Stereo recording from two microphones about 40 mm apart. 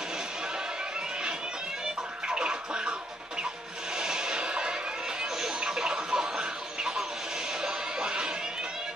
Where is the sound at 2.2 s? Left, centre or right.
Right.